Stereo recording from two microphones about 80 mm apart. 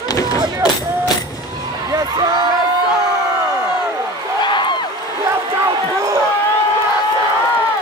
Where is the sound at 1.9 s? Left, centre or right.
Right.